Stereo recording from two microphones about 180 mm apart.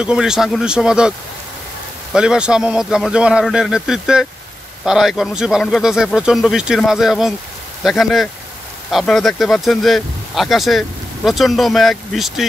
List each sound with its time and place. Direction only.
0.0 s speech: 5° right (ahead or behind)
2.1 s speech: 5° right (ahead or behind)